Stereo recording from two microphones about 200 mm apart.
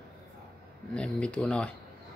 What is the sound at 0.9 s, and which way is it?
Speech, 5° left (ahead or behind).